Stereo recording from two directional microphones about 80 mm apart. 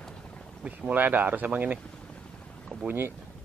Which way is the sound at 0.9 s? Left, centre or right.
Right.